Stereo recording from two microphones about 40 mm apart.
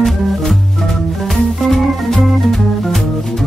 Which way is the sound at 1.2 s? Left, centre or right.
Centre.